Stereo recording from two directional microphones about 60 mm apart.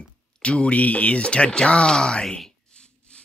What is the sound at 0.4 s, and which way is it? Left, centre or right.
Speech, centre.